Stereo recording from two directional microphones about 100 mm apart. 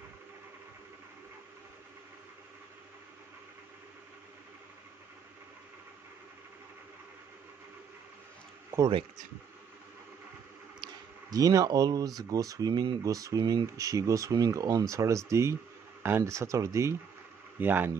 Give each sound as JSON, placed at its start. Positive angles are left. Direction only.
{"t": 8.7, "sound": "speech", "side_deg": -20}
{"t": 10.8, "sound": "a sound", "side_deg": -40}
{"t": 12.2, "sound": "speech", "side_deg": -40}
{"t": 17.6, "sound": "speech", "side_deg": -20}